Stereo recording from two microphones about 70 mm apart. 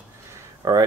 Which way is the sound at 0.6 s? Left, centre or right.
Right.